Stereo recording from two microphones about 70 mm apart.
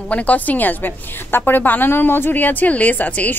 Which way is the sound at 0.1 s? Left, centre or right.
Left.